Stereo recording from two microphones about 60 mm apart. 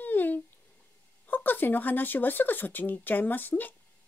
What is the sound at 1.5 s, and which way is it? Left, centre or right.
Speech, left.